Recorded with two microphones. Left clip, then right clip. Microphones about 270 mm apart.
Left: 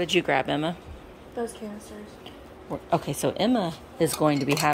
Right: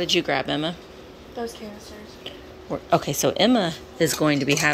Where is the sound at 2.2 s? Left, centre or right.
Centre.